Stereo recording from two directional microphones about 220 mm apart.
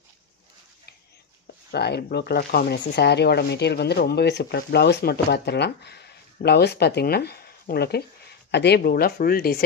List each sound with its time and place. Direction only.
1.7 s speech: 45° left (ahead or behind)